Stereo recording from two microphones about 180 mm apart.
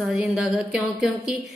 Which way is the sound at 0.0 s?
5° right (ahead or behind).